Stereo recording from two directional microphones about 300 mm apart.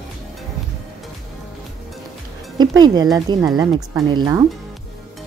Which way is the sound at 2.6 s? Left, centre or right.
Centre.